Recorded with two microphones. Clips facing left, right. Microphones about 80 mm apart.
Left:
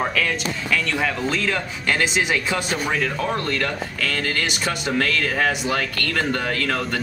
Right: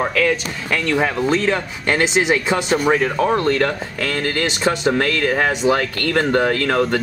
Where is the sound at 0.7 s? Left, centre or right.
Right.